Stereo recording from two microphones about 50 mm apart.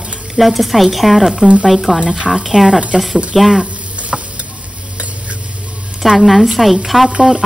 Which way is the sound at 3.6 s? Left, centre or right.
Right.